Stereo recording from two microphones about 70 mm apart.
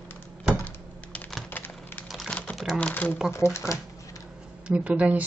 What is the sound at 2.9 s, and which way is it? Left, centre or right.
Shuffling cards, left.